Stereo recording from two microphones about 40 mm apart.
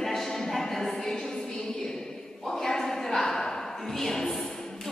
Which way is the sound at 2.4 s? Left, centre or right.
Centre.